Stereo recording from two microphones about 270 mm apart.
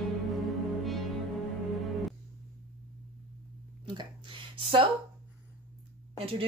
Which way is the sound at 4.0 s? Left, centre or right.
Centre.